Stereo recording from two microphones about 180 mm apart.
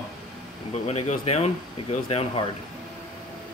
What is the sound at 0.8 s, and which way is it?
Speech, 35° left (ahead or behind).